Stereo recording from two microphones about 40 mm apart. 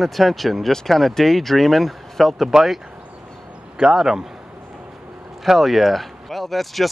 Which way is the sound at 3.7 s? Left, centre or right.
Centre.